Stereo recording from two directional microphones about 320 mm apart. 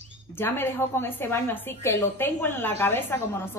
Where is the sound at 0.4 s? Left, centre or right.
Centre.